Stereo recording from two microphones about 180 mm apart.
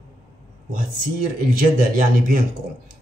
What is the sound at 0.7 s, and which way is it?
Speech, 50° right (ahead or behind).